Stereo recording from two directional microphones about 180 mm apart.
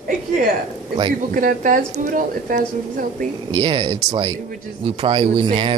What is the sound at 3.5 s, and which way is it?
Speech, 25° right (ahead or behind).